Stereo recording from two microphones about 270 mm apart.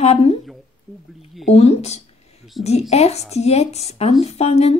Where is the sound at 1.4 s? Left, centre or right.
Left.